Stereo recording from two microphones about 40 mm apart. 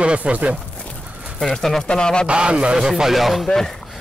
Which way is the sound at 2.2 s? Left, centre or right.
Right.